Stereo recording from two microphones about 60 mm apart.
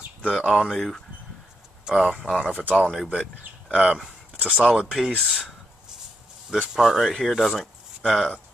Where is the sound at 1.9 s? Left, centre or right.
Centre.